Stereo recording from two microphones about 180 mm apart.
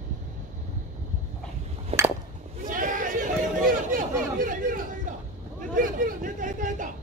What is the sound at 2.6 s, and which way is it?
Chatter, 50° right (ahead or behind).